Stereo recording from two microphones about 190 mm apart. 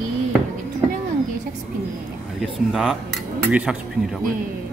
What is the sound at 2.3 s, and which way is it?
Speech, centre (ahead or behind).